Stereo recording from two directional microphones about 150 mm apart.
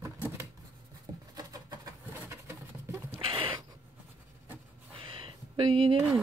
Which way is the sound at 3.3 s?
35° right (ahead or behind).